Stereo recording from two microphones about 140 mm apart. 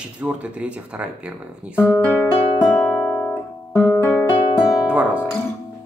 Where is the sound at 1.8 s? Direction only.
15° left (ahead or behind).